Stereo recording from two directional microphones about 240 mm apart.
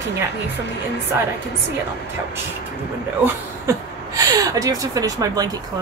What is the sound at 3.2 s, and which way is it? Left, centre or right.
A woman's voice, centre.